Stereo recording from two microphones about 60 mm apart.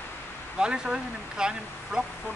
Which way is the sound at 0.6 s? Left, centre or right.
Centre.